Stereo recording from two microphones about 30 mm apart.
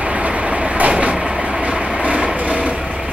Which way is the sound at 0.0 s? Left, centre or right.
Right.